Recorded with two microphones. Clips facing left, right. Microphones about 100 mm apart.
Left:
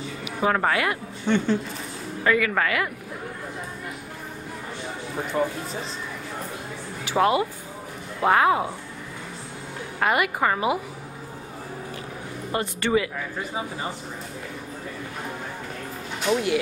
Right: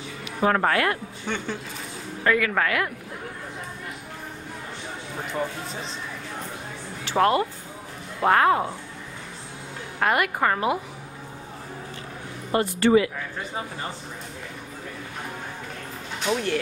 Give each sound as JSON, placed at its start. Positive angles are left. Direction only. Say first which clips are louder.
{"t": 0.4, "sound": "a woman's voice", "louder": "right 1 dB", "side_deg": 5}
{"t": 5.3, "sound": "a woman's voice", "louder": "left 4 dB", "side_deg": 5}
{"t": 7.1, "sound": "a woman's voice", "louder": "even", "side_deg": 10}
{"t": 9.9, "sound": "a woman's voice", "louder": "even", "side_deg": 5}
{"t": 12.5, "sound": "speech", "louder": "right 4 dB", "side_deg": -30}
{"t": 16.3, "sound": "speech", "louder": "left 2 dB", "side_deg": 10}